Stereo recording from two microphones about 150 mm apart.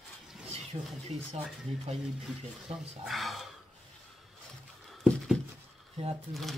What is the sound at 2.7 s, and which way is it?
Speech, 40° right (ahead or behind).